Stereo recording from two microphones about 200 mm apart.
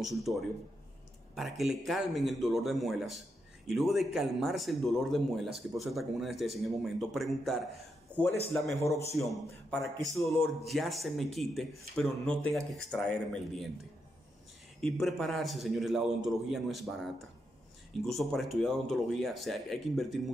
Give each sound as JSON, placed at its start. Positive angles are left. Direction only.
{"t": 0.0, "sound": "speech", "side_deg": 0}
{"t": 8.7, "sound": "a man's voice", "side_deg": 15}
{"t": 9.2, "sound": "speech", "side_deg": 0}
{"t": 14.8, "sound": "speech", "side_deg": 0}